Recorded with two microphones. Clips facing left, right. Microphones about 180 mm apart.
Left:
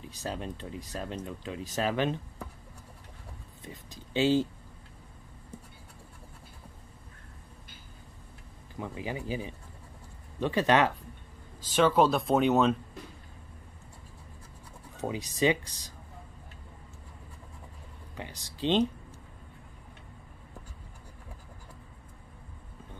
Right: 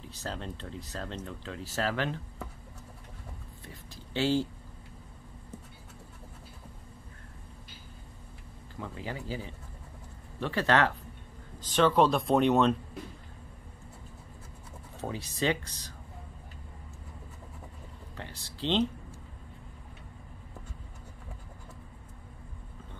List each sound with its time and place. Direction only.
0.0 s speech: 15° left (ahead or behind)
3.6 s speech: 15° left (ahead or behind)
8.7 s speech: 15° left (ahead or behind)
15.0 s speech: 15° left (ahead or behind)
18.1 s speech: 15° left (ahead or behind)